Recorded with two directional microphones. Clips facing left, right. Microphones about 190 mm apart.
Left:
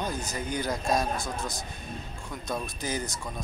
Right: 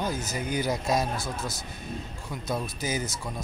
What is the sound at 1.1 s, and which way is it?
Speech, 15° left (ahead or behind).